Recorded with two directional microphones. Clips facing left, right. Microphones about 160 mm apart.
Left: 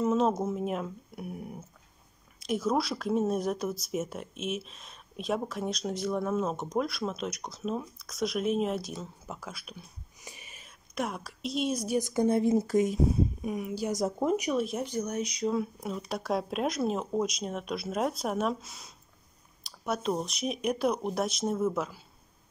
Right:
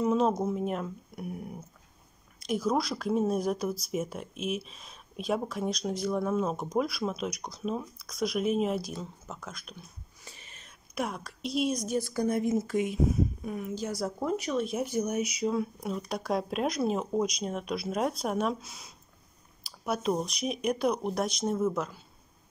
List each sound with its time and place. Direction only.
0.0 s speech: centre (ahead or behind)
12.0 s speech: 20° left (ahead or behind); by 13.2 s 40° left (ahead or behind)
13.4 s speech: 15° left (ahead or behind)
14.6 s speech: centre (ahead or behind)